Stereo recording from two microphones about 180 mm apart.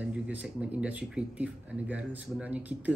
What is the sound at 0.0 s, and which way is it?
Speech, 10° right (ahead or behind).